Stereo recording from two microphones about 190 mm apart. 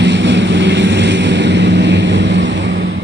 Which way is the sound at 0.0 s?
70° right (ahead or behind).